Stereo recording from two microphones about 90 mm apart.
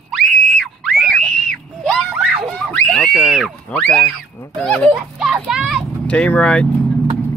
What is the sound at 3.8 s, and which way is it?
Speech, 15° left (ahead or behind).